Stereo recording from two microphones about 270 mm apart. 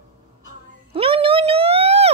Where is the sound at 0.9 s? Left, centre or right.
Centre.